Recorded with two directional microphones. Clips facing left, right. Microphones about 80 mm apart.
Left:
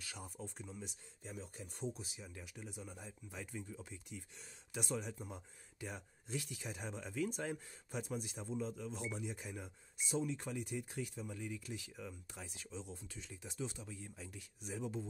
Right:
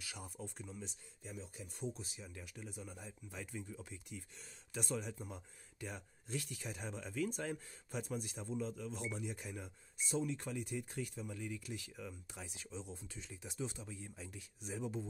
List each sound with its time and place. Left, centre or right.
0.0 s speech: centre
1.2 s speech: left
2.0 s speech: centre
12.3 s speech: centre